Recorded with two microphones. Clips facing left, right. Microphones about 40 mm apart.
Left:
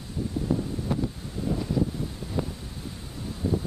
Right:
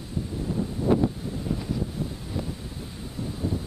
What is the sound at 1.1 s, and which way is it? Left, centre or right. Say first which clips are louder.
Wind noise: even; centre.